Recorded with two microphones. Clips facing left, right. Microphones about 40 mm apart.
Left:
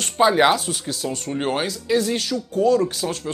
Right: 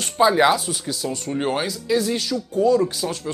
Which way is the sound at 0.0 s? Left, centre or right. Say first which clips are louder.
Even; left.